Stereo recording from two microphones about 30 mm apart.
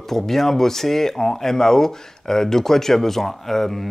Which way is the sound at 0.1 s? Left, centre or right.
Centre.